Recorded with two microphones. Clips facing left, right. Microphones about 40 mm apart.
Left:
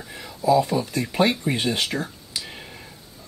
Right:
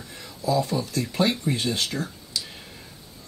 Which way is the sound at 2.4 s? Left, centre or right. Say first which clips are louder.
Left 4 dB; left.